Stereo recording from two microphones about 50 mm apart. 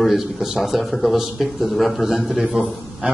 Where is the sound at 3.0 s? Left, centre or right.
Right.